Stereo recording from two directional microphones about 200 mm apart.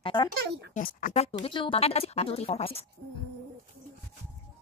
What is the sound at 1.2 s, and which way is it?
Speech, 30° left (ahead or behind).